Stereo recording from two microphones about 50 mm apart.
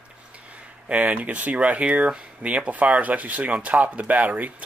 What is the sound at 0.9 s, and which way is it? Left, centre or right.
Speech, right.